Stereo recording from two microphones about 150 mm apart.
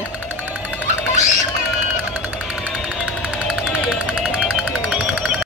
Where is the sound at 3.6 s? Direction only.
5° right (ahead or behind).